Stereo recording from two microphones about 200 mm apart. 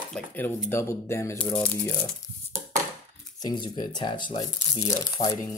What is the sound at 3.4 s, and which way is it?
Speech, 25° left (ahead or behind).